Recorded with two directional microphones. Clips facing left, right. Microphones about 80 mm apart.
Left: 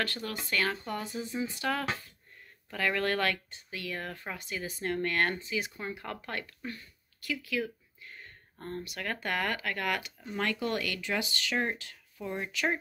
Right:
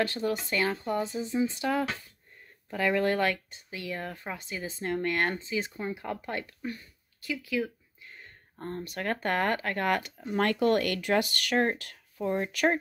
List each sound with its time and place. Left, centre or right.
0.0 s speech: right
12.2 s speech: right
12.4 s speech: right